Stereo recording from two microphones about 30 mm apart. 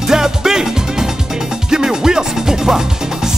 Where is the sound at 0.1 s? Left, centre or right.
Centre.